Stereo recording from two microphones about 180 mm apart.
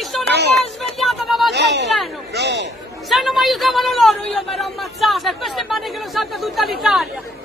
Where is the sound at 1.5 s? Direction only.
75° right (ahead or behind).